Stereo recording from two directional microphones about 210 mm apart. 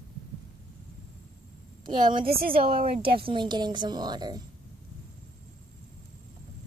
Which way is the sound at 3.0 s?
25° right (ahead or behind).